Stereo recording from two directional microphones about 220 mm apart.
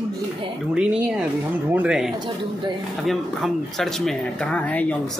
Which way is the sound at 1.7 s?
5° right (ahead or behind).